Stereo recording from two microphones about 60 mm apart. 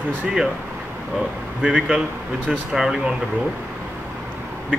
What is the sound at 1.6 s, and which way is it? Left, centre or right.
Speech, centre.